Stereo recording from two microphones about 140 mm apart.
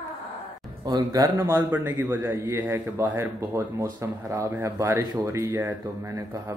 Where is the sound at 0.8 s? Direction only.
30° right (ahead or behind).